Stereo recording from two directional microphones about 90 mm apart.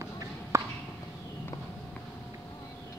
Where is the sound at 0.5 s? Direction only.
35° right (ahead or behind).